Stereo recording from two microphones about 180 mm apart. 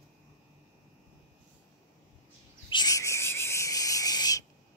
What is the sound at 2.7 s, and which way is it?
Whistle, 20° left (ahead or behind).